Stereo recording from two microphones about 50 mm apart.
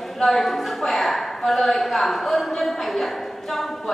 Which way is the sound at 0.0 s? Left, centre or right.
Centre.